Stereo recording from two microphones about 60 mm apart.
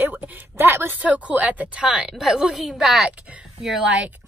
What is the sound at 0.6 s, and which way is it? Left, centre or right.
Speech, right.